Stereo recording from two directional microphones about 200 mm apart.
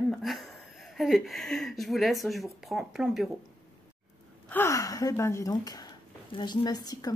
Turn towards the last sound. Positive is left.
turn(degrees=20)  # may be behind; listen again after turning